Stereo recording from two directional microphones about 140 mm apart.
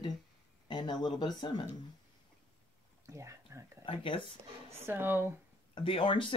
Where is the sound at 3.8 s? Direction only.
40° left (ahead or behind).